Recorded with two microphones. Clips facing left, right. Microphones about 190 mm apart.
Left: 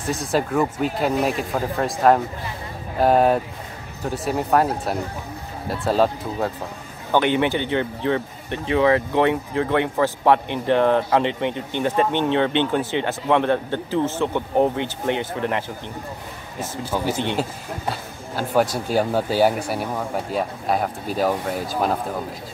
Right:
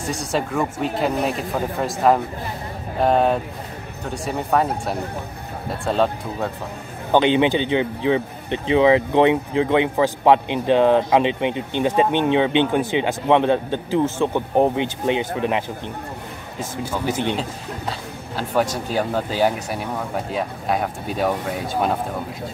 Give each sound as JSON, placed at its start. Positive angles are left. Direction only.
{"t": 0.0, "sound": "speech", "side_deg": 0}
{"t": 7.1, "sound": "speech", "side_deg": -20}
{"t": 16.9, "sound": "speech", "side_deg": 10}
{"t": 18.3, "sound": "speech", "side_deg": 0}